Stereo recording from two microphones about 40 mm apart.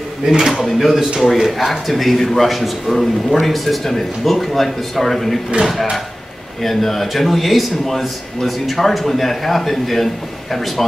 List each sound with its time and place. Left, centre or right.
0.5 s a man's voice: centre
6.6 s a man's voice: centre